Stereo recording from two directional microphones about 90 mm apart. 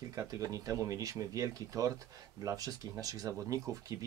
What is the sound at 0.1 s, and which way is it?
Speech, 40° right (ahead or behind).